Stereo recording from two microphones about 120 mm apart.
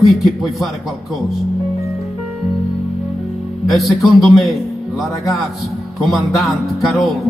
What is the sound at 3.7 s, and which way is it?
Speech, centre (ahead or behind).